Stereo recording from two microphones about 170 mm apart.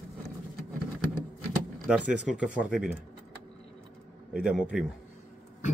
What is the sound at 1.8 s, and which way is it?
Speech, 5° right (ahead or behind).